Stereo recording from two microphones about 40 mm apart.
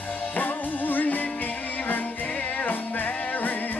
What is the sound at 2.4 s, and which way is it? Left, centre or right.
Music, left.